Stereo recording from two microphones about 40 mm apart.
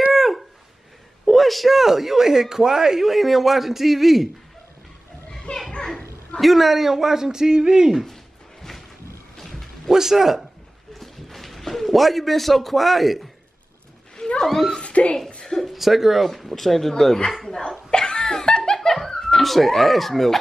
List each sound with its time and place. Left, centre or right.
0.1 s a sound: centre
1.2 s a man's voice: centre
5.5 s children playing: left
6.4 s speech: centre
8.6 s a sound: centre
9.4 s bow-wow: centre
9.8 s speech: centre
11.0 s a sound: centre
14.1 s cat: centre
14.8 s speech: left
15.6 s a man's voice: centre
17.9 s laughter: centre
18.8 s giggle: centre